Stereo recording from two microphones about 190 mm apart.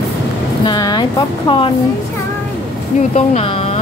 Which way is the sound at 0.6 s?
20° left (ahead or behind).